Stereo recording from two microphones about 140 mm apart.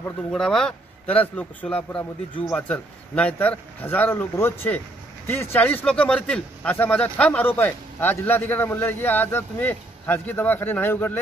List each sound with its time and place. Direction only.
0.3 s speech: 5° left (ahead or behind)